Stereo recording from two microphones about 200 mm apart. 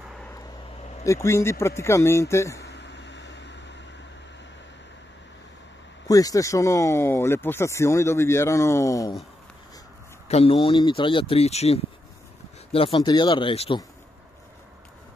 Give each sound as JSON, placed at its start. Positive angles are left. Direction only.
{"t": 1.0, "sound": "speech", "side_deg": 15}
{"t": 2.6, "sound": "vehicle", "side_deg": 60}
{"t": 6.0, "sound": "speech", "side_deg": 15}
{"t": 10.2, "sound": "speech", "side_deg": 30}